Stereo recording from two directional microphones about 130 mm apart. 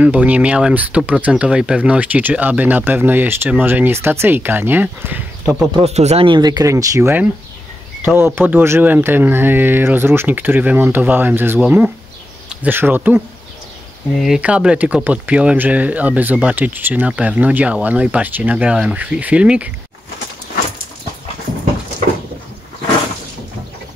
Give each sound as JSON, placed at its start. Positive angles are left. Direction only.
{"t": 0.0, "sound": "speech", "side_deg": -10}
{"t": 5.8, "sound": "speech", "side_deg": -55}
{"t": 6.2, "sound": "speech", "side_deg": -35}
{"t": 14.1, "sound": "speech", "side_deg": -5}